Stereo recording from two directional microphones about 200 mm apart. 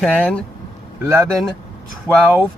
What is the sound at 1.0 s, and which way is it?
Speech, 15° right (ahead or behind).